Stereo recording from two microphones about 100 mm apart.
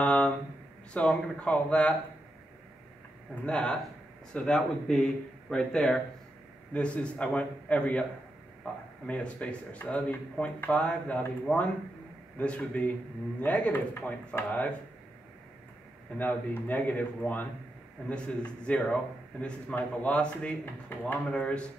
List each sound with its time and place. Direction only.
0.0 s a sound: 10° left (ahead or behind)
0.9 s speech: 10° left (ahead or behind)
3.4 s speech: 10° left (ahead or behind)
9.0 s speech: 10° left (ahead or behind)
16.2 s speech: 15° left (ahead or behind)